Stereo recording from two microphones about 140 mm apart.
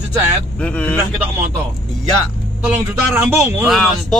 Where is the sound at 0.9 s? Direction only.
15° right (ahead or behind).